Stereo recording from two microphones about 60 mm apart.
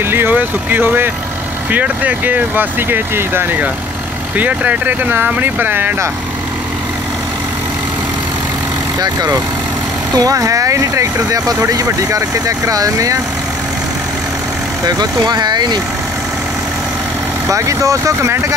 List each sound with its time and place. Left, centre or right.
0.0 s speech: right
10.1 s speech: right
17.5 s speech: right